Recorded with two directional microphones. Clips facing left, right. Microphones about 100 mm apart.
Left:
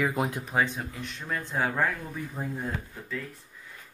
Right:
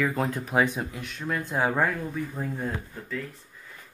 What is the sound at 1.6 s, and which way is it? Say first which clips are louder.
Speech: right 3 dB; 15° right (ahead or behind).